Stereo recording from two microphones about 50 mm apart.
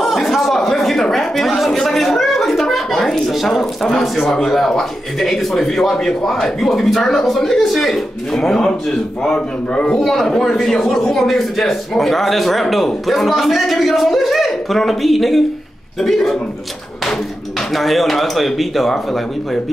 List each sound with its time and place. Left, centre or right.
0.0 s a sound: centre
1.0 s a man's voice: centre
17.7 s a man's voice: centre